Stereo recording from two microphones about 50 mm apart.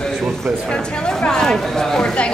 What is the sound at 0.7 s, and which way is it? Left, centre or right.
Speech, centre.